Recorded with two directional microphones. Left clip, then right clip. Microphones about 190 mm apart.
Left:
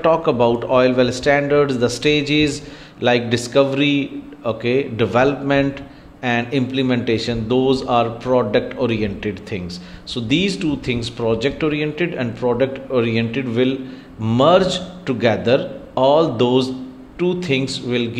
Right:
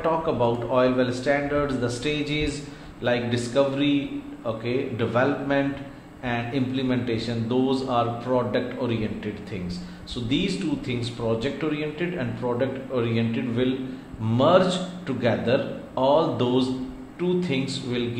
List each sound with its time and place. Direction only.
0.0 s a man's voice: 45° left (ahead or behind)